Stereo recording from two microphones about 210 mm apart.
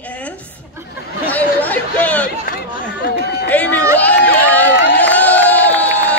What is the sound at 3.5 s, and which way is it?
Speech, 5° left (ahead or behind).